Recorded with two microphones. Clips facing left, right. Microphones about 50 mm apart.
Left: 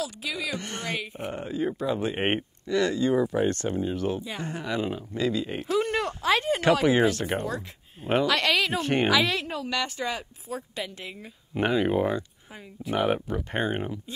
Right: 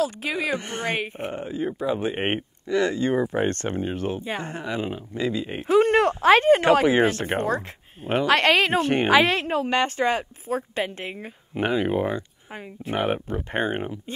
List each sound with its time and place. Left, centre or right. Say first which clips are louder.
0.0 s speech: right 6 dB; right
0.6 s speech: right 4 dB; right
0.8 s speech: right 6 dB; right
1.3 s speech: left 3 dB; centre
2.1 s speech: right 1 dB; centre
2.6 s speech: right 3 dB; right
3.0 s speech: right 1 dB; right
5.7 s speech: right 9 dB; right
11.5 s speech: right 1 dB; centre
12.5 s speech: right 1 dB; right
13.0 s speech: even; right